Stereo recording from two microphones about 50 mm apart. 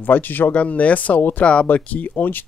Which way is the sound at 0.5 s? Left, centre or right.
Left.